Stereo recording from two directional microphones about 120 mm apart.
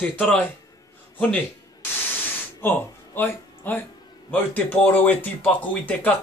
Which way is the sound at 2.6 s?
15° left (ahead or behind).